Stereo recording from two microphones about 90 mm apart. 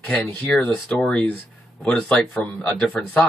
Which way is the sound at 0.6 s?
15° left (ahead or behind).